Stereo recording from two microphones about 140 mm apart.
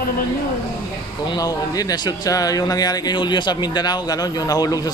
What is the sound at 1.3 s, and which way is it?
Speech, 25° left (ahead or behind).